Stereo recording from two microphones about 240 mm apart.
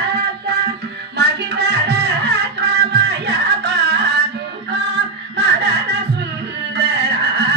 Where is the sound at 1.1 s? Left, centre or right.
Right.